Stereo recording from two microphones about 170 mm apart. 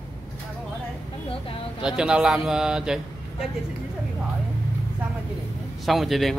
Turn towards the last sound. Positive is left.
turn(degrees=0)  # may be behind; listen again after turning